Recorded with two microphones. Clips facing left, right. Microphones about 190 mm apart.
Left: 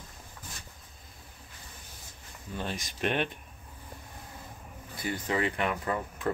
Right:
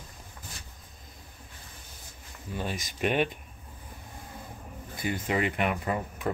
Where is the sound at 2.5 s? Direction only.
5° right (ahead or behind).